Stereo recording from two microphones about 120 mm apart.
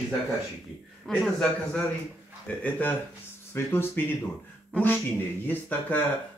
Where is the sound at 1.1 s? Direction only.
5° left (ahead or behind).